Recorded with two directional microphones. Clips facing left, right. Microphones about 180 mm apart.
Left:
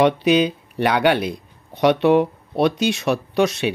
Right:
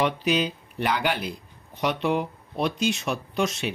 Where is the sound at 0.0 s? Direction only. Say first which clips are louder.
Left 8 dB; 70° left (ahead or behind).